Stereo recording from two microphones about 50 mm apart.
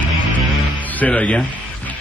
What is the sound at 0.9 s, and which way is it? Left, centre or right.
Speech, left.